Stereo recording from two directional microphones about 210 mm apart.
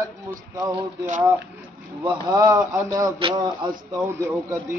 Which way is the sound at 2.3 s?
15° right (ahead or behind).